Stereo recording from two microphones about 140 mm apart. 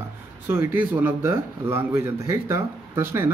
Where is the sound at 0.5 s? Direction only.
15° right (ahead or behind).